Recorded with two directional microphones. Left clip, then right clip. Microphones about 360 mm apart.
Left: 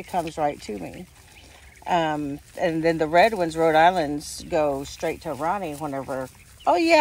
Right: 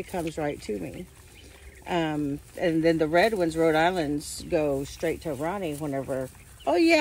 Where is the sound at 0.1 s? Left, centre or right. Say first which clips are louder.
Left 7 dB; centre.